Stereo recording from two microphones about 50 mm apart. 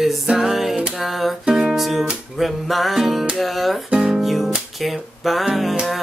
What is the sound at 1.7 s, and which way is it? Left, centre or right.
Speech, centre.